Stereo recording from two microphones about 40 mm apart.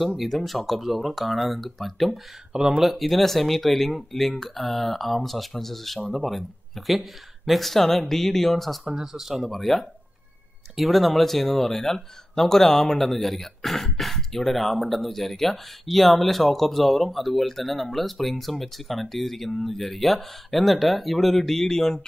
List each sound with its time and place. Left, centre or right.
0.0 s speech: centre
2.5 s speech: centre
2.8 s speech: centre
8.8 s speech: centre
9.5 s speech: centre